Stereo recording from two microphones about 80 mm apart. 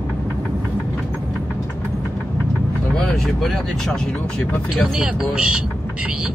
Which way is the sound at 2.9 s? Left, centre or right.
Centre.